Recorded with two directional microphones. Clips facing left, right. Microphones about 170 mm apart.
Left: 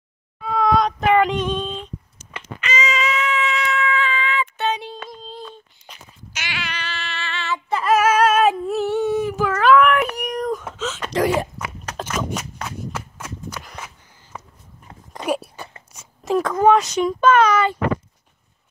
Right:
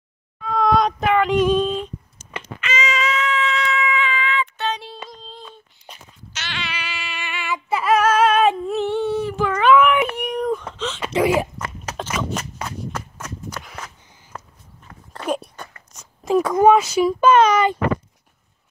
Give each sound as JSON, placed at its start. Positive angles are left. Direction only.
{"t": 0.4, "sound": "child singing", "side_deg": 5}
{"t": 2.6, "sound": "cat", "side_deg": 0}
{"t": 3.8, "sound": "a sound", "side_deg": -5}
{"t": 6.3, "sound": "cat", "side_deg": 10}
{"t": 6.7, "sound": "a sound", "side_deg": -10}
{"t": 7.8, "sound": "humming", "side_deg": 5}
{"t": 10.2, "sound": "whimper", "side_deg": 0}
{"t": 11.1, "sound": "walk", "side_deg": -5}
{"t": 12.2, "sound": "cap gun", "side_deg": 5}
{"t": 12.5, "sound": "a sound", "side_deg": 5}
{"t": 16.3, "sound": "a sound", "side_deg": -10}
{"t": 17.3, "sound": "a child's voice", "side_deg": -20}